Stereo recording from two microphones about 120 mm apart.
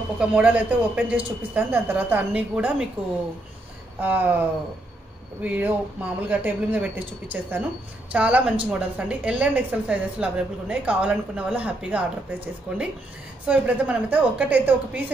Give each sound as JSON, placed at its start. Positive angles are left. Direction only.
{"t": 0.2, "sound": "a woman's voice", "side_deg": -10}
{"t": 4.0, "sound": "a woman's voice", "side_deg": -15}